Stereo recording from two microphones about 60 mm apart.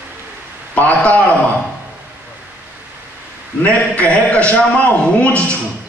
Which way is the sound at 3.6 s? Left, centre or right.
Left.